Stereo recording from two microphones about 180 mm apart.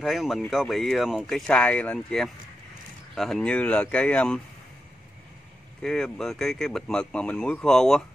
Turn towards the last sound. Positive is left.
turn(degrees=5)  # may be behind; listen again after turning